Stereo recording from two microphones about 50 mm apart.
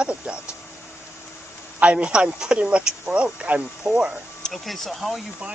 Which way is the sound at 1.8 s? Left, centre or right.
Right.